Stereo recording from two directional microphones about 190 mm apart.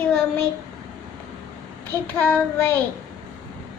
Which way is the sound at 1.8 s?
10° left (ahead or behind).